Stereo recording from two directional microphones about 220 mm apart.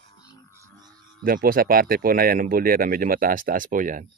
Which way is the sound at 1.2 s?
40° right (ahead or behind).